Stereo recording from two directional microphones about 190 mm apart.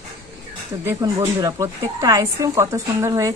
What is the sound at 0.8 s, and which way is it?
A woman's voice, 15° right (ahead or behind).